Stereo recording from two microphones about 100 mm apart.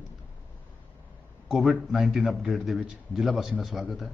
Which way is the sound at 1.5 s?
Centre (ahead or behind).